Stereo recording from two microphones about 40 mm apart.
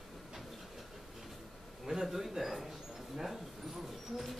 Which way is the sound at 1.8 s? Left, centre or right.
Centre.